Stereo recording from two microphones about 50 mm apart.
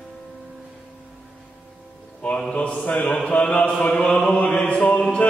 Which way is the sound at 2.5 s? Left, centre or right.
Left.